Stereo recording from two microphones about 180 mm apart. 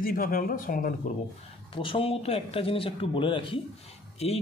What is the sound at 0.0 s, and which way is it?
Speech, 50° left (ahead or behind).